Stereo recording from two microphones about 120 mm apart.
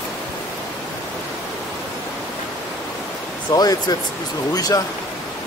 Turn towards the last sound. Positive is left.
turn(degrees=30)  # may be behind; listen again after turning